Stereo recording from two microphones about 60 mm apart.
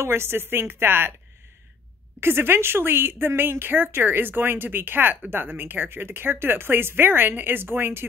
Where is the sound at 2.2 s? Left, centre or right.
Right.